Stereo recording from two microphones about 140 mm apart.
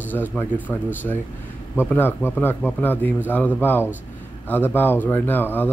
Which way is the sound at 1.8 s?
15° left (ahead or behind).